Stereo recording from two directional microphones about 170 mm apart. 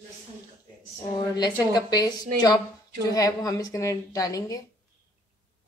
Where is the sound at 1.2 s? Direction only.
25° left (ahead or behind).